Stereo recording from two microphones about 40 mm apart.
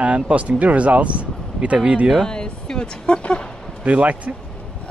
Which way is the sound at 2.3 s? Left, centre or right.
Centre.